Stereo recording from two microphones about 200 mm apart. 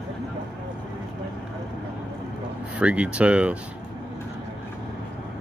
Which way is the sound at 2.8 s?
5° right (ahead or behind).